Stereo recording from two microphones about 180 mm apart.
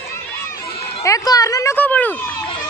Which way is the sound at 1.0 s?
20° left (ahead or behind).